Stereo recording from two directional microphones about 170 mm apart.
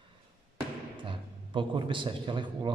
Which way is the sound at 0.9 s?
30° right (ahead or behind).